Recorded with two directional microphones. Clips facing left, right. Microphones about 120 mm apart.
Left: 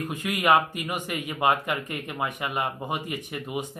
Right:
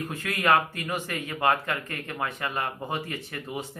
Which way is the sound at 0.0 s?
15° left (ahead or behind).